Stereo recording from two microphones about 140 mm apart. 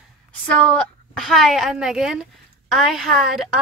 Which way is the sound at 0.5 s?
10° left (ahead or behind).